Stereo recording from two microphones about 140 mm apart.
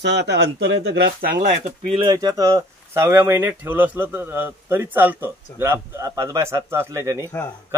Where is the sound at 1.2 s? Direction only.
70° right (ahead or behind).